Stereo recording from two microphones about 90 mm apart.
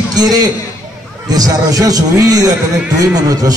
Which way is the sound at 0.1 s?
45° right (ahead or behind).